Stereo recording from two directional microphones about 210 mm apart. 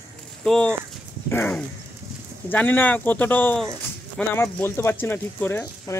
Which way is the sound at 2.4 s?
10° left (ahead or behind).